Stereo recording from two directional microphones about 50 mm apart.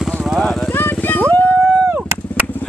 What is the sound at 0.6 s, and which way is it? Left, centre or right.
Vehicle, left.